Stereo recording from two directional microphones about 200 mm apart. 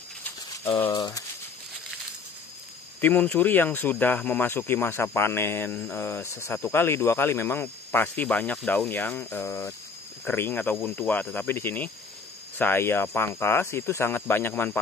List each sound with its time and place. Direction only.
0.9 s speech: 20° left (ahead or behind)
3.0 s speech: 10° left (ahead or behind)